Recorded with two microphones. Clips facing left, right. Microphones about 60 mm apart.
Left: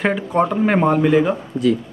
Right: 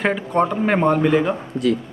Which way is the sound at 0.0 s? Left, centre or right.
Centre.